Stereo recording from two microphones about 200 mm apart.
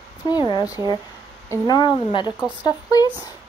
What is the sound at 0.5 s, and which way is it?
Speech, 20° left (ahead or behind).